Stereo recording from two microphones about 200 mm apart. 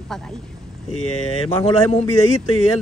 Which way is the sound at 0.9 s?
90° left.